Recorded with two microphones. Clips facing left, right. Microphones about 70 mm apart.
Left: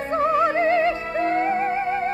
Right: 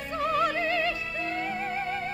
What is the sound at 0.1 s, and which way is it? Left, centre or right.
Music, left.